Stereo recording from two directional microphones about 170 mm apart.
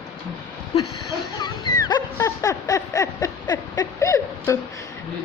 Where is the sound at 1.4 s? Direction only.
25° left (ahead or behind).